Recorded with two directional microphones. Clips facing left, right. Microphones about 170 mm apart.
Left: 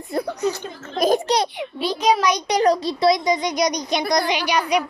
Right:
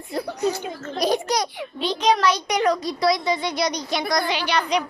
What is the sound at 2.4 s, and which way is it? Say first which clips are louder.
Speech: left 3 dB; 35° left (ahead or behind).